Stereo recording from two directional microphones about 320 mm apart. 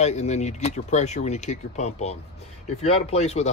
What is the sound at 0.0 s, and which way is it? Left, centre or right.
Speech, left.